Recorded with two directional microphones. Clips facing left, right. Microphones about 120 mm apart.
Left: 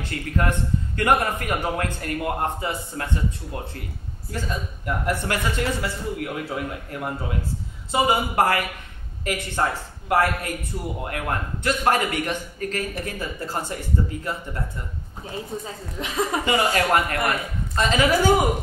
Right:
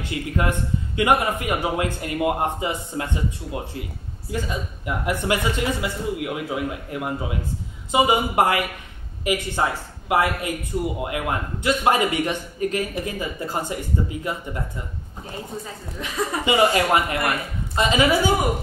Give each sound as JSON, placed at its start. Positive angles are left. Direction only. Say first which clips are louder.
{"t": 0.0, "sound": "speech", "louder": "right 1 dB", "side_deg": -10}
{"t": 16.0, "sound": "speech", "louder": "left 1 dB", "side_deg": 25}
{"t": 16.4, "sound": "speech", "louder": "right 5 dB", "side_deg": -15}